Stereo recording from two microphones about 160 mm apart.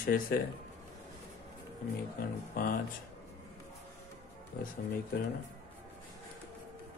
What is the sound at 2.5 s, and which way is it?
Speech, 65° left (ahead or behind).